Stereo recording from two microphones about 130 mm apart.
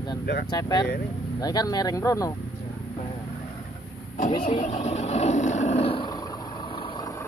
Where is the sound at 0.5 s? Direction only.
30° left (ahead or behind).